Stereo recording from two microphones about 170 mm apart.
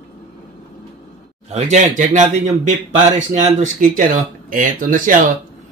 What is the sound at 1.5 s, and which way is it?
Speech, 45° right (ahead or behind).